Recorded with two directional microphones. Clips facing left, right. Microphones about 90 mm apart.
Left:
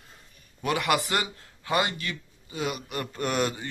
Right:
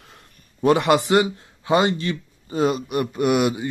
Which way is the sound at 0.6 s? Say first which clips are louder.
Right 9 dB; 30° right (ahead or behind).